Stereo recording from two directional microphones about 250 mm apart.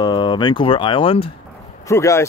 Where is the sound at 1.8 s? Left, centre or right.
Centre.